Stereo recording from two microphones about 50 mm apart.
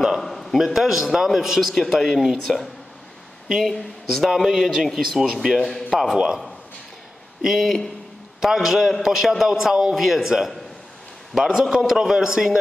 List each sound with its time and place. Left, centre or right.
0.0 s a sound: centre
0.7 s a man's voice: centre
5.6 s a man's voice: centre
6.1 s a man's voice: centre
7.4 s a man's voice: centre